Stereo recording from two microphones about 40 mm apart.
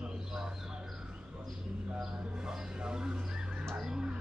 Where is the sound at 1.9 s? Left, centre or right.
Centre.